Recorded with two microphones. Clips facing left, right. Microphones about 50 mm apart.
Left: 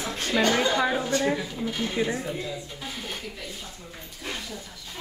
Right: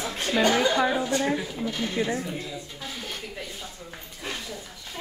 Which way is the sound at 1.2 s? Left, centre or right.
Centre.